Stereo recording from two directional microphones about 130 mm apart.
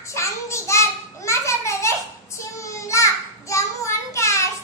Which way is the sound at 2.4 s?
25° left (ahead or behind).